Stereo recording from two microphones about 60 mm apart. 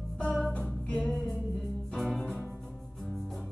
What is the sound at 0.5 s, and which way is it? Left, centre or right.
Music, centre.